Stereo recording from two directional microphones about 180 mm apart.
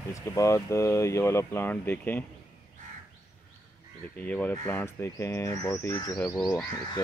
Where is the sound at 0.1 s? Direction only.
15° left (ahead or behind).